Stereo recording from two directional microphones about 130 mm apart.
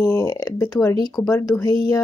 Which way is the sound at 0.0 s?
25° left (ahead or behind).